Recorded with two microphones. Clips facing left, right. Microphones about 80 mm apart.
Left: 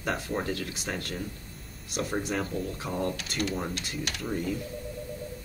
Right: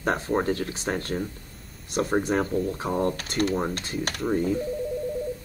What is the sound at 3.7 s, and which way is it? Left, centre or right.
Mechanisms, right.